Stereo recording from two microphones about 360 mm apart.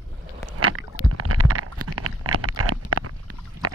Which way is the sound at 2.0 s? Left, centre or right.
Right.